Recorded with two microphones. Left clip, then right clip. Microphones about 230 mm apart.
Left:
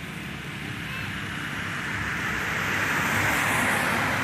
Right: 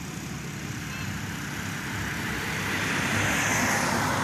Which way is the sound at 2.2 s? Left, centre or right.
Right.